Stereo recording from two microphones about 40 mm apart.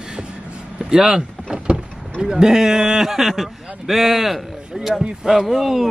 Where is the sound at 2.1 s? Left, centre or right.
Centre.